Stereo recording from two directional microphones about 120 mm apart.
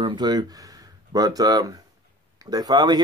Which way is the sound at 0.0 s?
35° right (ahead or behind).